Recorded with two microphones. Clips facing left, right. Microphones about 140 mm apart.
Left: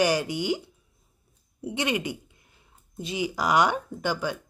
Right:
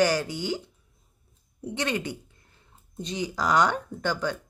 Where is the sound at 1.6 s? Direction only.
15° left (ahead or behind).